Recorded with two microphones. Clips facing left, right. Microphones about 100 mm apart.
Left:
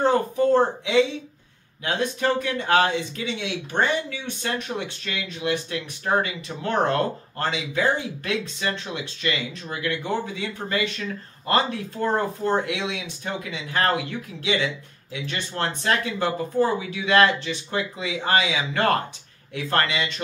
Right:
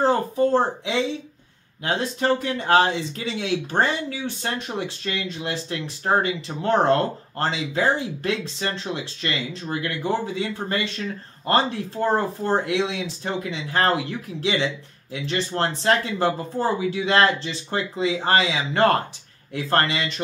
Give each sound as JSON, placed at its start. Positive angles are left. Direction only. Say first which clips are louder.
{"t": 0.0, "sound": "speech", "louder": "even", "side_deg": -30}
{"t": 15.1, "sound": "speech", "louder": "right 4 dB", "side_deg": -30}